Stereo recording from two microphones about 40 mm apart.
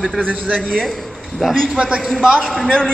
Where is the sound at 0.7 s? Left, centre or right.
Centre.